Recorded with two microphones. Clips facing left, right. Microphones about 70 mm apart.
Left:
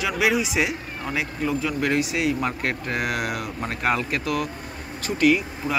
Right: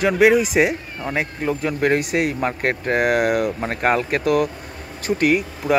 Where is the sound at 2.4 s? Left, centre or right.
Right.